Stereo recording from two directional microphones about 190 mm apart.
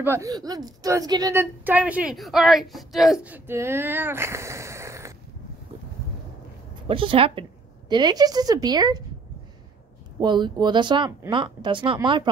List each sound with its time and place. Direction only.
0.0 s a woman's voice: 15° right (ahead or behind)
6.9 s speech: 30° right (ahead or behind)
10.2 s speech: 25° right (ahead or behind)